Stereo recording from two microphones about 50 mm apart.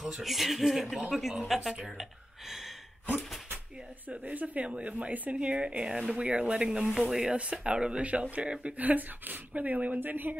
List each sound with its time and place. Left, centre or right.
0.2 s speech: centre
4.1 s speech: right; by 7.2 s centre
7.2 s speech: right